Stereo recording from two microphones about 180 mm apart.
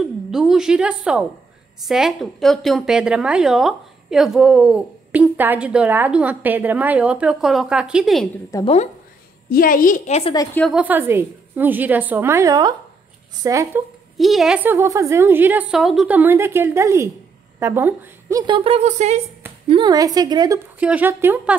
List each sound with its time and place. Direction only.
0.3 s a woman's voice: centre (ahead or behind)
8.5 s a woman's voice: 20° left (ahead or behind)
9.5 s a woman's voice: 50° left (ahead or behind)
10.3 s a woman's voice: 20° left (ahead or behind)
10.6 s a woman's voice: 5° right (ahead or behind)
14.1 s a woman's voice: centre (ahead or behind)
18.4 s speech: 30° right (ahead or behind)
19.7 s speech: 25° right (ahead or behind)
20.8 s a woman's voice: 10° right (ahead or behind)